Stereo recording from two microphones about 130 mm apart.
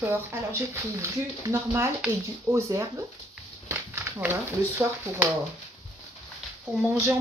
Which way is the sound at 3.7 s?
20° right (ahead or behind).